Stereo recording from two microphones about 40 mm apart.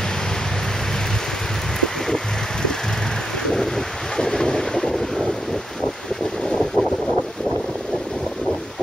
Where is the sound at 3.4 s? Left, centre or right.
Centre.